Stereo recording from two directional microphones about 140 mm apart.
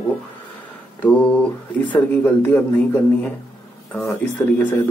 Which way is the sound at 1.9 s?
15° left (ahead or behind).